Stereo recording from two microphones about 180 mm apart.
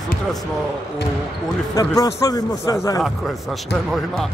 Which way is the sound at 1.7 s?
20° left (ahead or behind).